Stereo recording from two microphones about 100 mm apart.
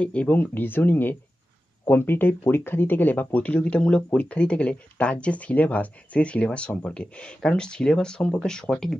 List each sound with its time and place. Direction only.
0.0 s speech: 10° left (ahead or behind)